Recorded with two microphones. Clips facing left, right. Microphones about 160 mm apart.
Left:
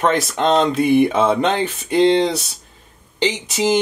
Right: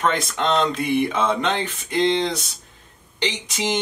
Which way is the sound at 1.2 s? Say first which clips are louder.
Left 5 dB; 5° left (ahead or behind).